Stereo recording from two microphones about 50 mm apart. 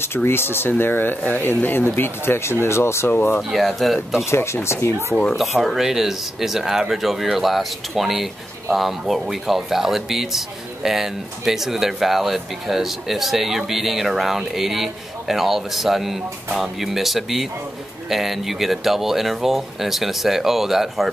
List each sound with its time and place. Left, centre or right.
0.1 s speech: left
3.5 s speech: centre
4.2 s speech: left
5.4 s speech: centre